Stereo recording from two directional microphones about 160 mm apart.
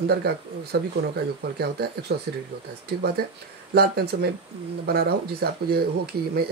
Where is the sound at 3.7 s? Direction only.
80° right.